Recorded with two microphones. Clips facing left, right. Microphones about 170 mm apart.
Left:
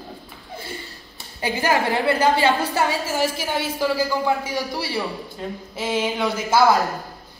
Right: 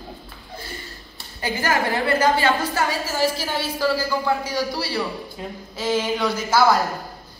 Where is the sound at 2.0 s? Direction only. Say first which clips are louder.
Even; 25° left (ahead or behind).